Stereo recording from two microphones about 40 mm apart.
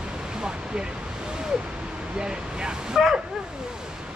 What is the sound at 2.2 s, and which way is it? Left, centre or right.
Speech, centre.